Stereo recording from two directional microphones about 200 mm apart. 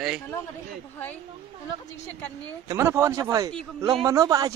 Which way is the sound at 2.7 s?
15° right (ahead or behind).